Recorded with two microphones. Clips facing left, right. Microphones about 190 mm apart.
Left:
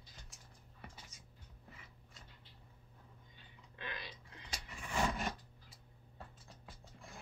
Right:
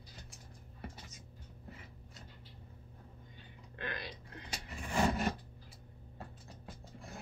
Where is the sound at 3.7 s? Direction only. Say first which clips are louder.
Right 5 dB; 55° right (ahead or behind).